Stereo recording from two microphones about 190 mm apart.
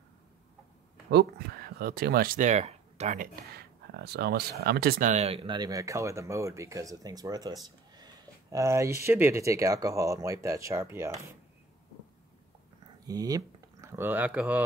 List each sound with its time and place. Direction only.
1.1 s speech: 50° right (ahead or behind)
3.5 s speech: 60° right (ahead or behind); by 11.3 s 15° right (ahead or behind)
13.0 s speech: 20° right (ahead or behind)